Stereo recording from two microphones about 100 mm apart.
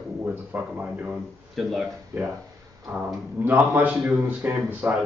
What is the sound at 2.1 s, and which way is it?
A man's voice, 20° right (ahead or behind).